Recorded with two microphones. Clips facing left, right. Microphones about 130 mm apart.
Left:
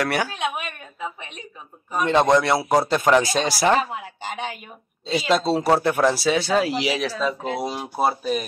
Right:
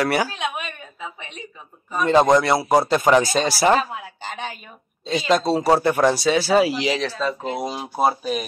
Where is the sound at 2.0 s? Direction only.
Centre (ahead or behind).